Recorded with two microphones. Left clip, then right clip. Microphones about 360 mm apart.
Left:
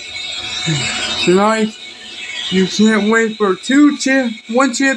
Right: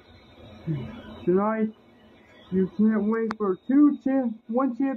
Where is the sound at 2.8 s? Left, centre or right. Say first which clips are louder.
Left 14 dB; right.